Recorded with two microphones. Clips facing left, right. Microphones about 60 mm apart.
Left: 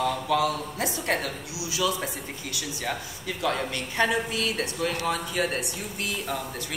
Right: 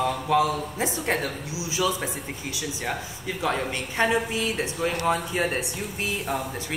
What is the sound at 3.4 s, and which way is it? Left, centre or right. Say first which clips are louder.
A woman's voice: right 1 dB; centre.